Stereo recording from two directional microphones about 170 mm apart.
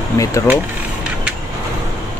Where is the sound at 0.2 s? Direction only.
20° left (ahead or behind).